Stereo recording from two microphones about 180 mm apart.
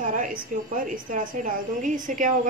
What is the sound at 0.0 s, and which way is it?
A woman's voice, 50° right (ahead or behind).